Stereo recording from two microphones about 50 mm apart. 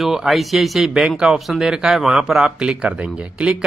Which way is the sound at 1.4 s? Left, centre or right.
Centre.